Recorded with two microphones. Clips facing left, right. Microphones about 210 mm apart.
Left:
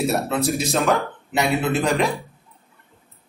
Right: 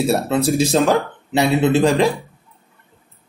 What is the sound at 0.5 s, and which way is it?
Speech, 30° right (ahead or behind).